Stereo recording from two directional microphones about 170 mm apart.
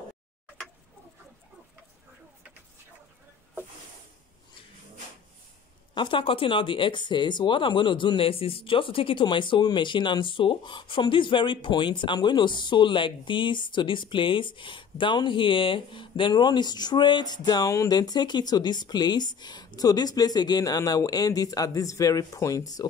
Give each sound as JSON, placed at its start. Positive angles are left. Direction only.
{"t": 5.9, "sound": "speech", "side_deg": 30}